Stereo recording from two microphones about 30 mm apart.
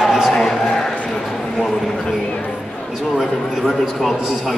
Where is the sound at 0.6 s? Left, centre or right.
Centre.